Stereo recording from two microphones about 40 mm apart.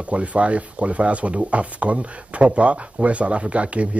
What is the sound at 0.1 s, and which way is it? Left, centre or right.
Speech, right.